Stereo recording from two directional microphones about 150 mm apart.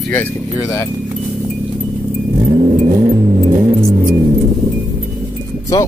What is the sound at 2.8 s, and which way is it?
Music, 30° right (ahead or behind).